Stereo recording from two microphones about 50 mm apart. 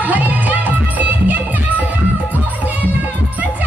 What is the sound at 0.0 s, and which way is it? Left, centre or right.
Music, right.